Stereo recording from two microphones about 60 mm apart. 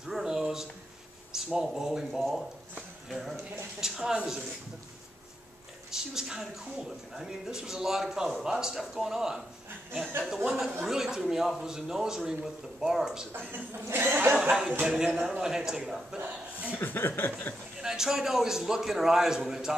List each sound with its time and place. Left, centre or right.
0.0 s a sound: centre
1.3 s speech: centre
5.9 s speech: centre
13.8 s speech: right
14.3 s speech: centre
16.2 s speech: right
16.7 s a sound: left
17.8 s speech: centre